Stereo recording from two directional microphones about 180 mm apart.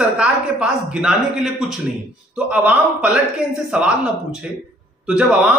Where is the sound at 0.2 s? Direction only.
5° right (ahead or behind).